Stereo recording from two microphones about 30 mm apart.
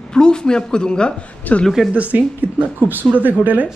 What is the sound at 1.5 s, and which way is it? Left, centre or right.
Speech, left.